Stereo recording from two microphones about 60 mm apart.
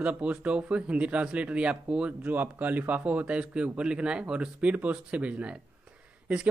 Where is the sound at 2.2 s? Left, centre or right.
Right.